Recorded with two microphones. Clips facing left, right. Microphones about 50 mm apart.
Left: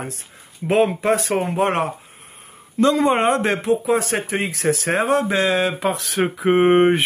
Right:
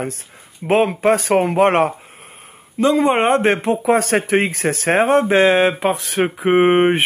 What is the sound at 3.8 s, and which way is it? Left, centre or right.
Speech, right.